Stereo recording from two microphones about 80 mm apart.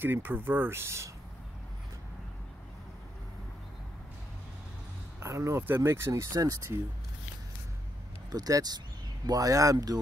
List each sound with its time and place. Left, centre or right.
0.0 s speech: right
5.2 s speech: right
6.3 s speech: right
8.3 s speech: right